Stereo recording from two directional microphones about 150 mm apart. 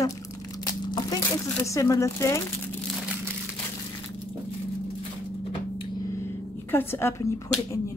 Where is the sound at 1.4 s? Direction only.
20° left (ahead or behind).